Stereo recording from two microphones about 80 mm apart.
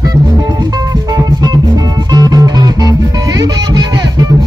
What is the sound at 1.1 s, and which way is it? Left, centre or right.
Music, right.